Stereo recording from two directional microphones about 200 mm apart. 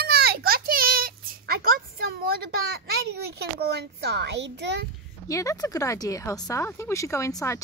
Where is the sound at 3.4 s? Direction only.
55° right (ahead or behind).